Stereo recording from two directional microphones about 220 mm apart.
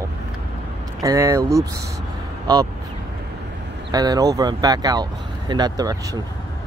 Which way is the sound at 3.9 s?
15° right (ahead or behind).